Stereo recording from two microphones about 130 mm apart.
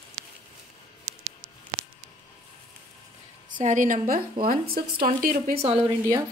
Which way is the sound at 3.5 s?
80° right.